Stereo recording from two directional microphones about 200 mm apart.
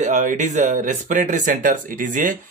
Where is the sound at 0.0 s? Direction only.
40° right (ahead or behind).